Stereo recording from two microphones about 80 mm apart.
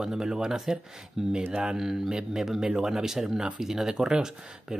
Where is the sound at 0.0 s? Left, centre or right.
Centre.